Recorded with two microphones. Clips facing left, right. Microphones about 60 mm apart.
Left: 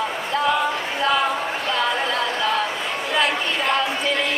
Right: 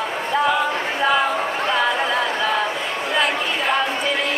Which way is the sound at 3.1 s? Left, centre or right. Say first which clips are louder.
Even; centre.